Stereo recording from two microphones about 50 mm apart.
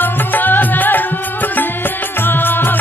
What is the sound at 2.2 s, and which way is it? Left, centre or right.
Music, left.